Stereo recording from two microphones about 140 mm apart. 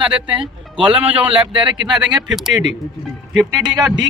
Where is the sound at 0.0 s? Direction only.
10° right (ahead or behind).